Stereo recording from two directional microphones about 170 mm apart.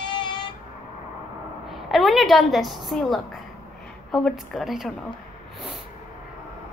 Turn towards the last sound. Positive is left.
turn(degrees=0)  # may be behind; listen again after turning